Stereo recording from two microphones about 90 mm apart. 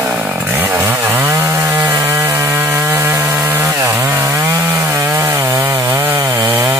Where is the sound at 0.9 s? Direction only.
30° right (ahead or behind).